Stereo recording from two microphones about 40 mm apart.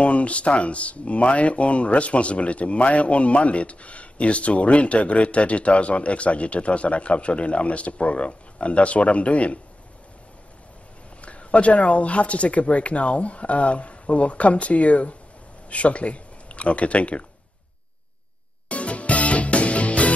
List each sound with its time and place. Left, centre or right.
0.0 s speech: left
11.1 s speech: left
18.7 s music: left